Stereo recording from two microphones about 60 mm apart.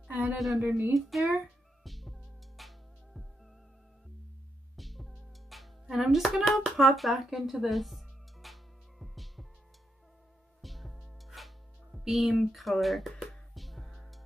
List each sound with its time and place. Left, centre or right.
0.1 s a sound: right
0.4 s a woman's voice: centre
0.7 s speech: right
0.9 s music: centre
4.7 s music: centre
10.6 s music: centre